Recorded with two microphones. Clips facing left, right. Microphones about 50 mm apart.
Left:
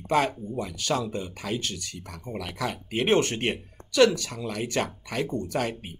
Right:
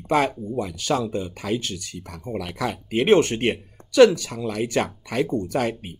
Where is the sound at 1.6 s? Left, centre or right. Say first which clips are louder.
Right 2 dB; right.